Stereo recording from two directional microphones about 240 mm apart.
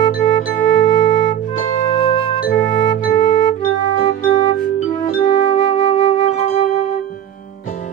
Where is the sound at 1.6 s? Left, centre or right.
Left.